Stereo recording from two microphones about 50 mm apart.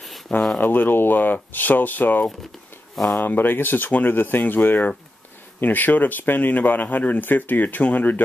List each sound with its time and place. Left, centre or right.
0.6 s speech: left